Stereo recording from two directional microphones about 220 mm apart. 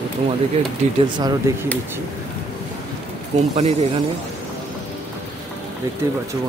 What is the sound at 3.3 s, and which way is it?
Speech, 30° right (ahead or behind).